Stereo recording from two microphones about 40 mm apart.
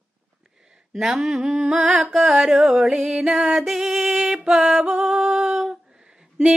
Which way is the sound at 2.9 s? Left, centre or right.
Right.